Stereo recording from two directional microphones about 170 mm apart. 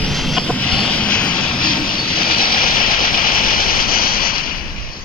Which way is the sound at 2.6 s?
55° left (ahead or behind).